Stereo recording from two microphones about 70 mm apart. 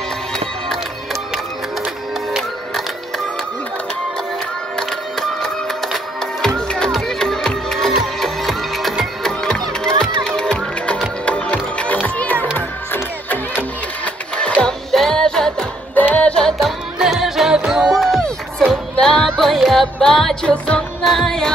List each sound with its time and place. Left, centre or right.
4.7 s music: centre; by 14.1 s left
14.6 s music: centre
15.9 s music: left
17.0 s music: centre
18.9 s music: centre